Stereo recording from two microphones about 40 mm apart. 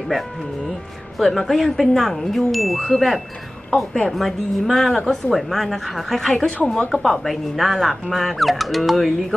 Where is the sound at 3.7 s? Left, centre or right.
Left.